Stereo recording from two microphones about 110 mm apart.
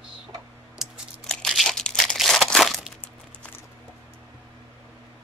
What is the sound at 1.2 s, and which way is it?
Crumpling, 5° left (ahead or behind).